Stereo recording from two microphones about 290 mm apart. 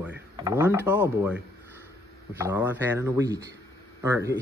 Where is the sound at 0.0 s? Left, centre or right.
Centre.